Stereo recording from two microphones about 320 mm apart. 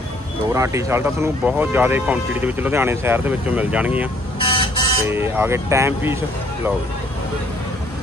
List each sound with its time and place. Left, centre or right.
0.5 s speech: centre
4.4 s buzzer: centre
5.0 s speech: centre